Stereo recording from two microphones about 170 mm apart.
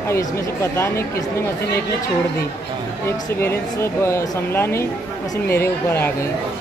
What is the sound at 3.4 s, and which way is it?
Speech, 15° left (ahead or behind).